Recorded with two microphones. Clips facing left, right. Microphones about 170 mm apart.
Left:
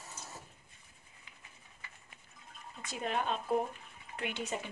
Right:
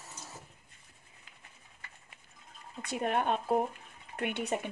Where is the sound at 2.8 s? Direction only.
60° right (ahead or behind).